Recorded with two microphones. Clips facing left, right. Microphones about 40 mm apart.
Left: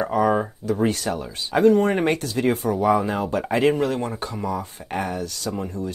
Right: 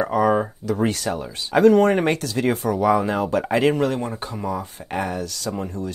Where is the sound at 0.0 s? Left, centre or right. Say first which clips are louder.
Right 1 dB; right.